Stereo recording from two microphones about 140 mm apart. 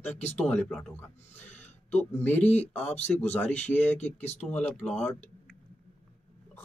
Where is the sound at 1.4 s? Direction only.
55° left (ahead or behind).